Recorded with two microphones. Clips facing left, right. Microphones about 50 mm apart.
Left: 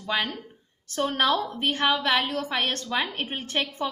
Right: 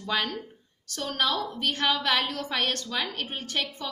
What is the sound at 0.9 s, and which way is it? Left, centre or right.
A woman's voice, left.